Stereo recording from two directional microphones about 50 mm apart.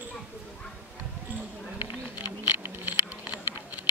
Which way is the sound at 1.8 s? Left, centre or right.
Right.